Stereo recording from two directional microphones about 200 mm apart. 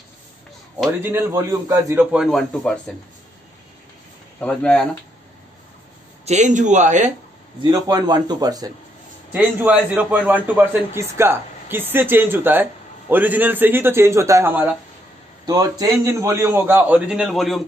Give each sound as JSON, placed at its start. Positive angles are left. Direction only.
{"t": 1.0, "sound": "a man's voice", "side_deg": -15}
{"t": 2.1, "sound": "a man's voice", "side_deg": 0}
{"t": 4.4, "sound": "a man's voice", "side_deg": 5}
{"t": 6.2, "sound": "speech", "side_deg": -35}
{"t": 7.6, "sound": "a man's voice", "side_deg": -20}
{"t": 9.3, "sound": "a man's voice", "side_deg": -10}